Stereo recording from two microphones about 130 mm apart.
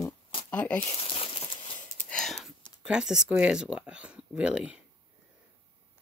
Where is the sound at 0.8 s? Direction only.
45° left (ahead or behind).